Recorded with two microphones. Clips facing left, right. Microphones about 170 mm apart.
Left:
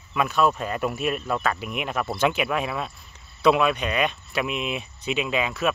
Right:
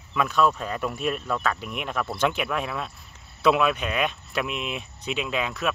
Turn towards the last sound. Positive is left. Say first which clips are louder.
# left 3 dB
turn(degrees=0)  # may be behind; listen again after turning